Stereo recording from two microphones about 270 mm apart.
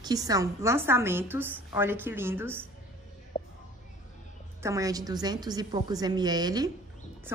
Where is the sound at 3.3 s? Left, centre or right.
Left.